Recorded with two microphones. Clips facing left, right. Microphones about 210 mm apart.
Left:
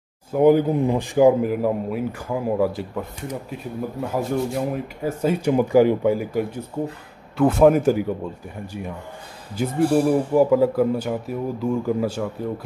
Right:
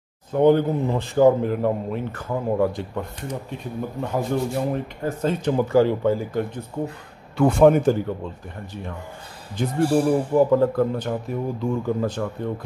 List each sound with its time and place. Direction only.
0.3 s speech: 10° left (ahead or behind)
9.6 s speech: 5° left (ahead or behind)